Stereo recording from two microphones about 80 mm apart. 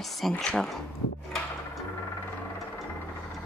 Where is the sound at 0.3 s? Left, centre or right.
Centre.